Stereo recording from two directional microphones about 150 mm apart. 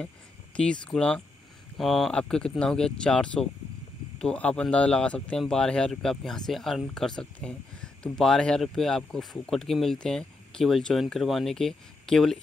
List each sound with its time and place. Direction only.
0.6 s speech: 5° left (ahead or behind)